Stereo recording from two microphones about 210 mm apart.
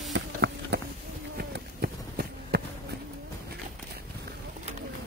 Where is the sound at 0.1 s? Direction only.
60° right (ahead or behind).